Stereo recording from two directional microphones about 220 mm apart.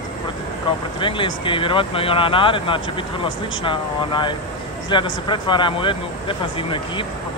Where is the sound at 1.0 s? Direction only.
25° left (ahead or behind).